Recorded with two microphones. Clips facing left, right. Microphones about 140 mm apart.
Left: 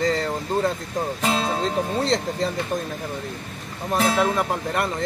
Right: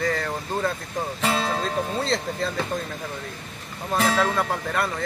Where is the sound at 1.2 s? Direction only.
Centre (ahead or behind).